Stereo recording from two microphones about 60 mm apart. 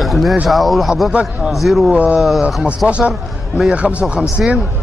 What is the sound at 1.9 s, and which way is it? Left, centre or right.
A man's voice, right.